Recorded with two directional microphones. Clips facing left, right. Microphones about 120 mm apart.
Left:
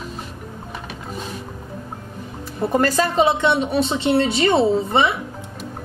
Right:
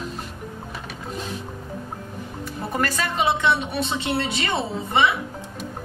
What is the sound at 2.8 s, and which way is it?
A woman's voice, 35° left (ahead or behind).